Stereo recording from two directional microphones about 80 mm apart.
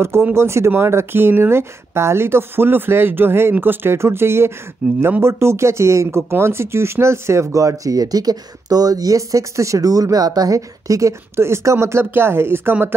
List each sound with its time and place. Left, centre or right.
0.0 s speech: right
4.8 s speech: centre
5.2 s speech: right